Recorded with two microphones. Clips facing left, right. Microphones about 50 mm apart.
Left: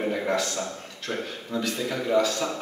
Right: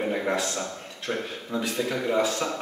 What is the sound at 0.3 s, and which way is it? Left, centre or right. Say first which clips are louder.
A man's voice: left 1 dB; right.